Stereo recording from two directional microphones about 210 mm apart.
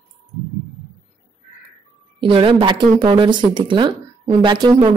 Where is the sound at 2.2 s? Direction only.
25° right (ahead or behind).